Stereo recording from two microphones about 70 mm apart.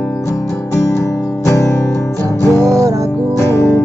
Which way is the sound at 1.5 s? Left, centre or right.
Left.